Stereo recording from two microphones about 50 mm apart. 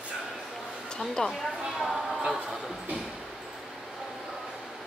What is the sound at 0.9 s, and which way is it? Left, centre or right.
Speech, centre.